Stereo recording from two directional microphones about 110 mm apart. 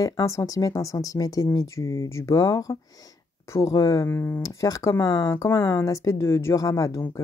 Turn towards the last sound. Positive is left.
turn(degrees=30)  # may be behind; listen again after turning